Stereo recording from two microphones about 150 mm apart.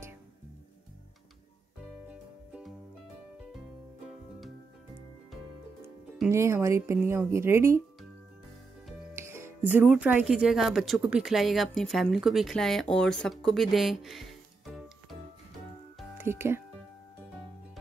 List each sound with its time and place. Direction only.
2.0 s music: 5° right (ahead or behind)
6.3 s a woman's voice: 20° right (ahead or behind)
9.1 s speech: 15° right (ahead or behind); by 15.1 s centre (ahead or behind)
16.2 s speech: 15° right (ahead or behind)